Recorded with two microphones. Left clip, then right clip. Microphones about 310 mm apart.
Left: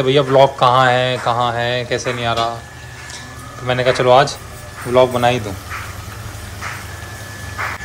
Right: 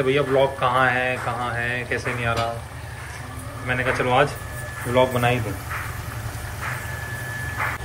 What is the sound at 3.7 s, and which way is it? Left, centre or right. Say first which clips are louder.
Speech: left 9 dB; centre.